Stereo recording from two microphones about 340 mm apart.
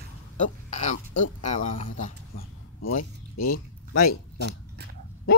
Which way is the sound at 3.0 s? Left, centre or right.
Left.